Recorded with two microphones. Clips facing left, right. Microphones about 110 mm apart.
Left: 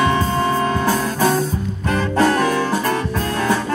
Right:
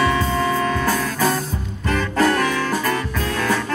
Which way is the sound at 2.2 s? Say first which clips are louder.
Left 2 dB; 25° left (ahead or behind).